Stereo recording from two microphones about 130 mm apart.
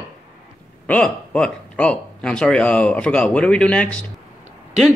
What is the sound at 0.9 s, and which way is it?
Speech, 10° left (ahead or behind).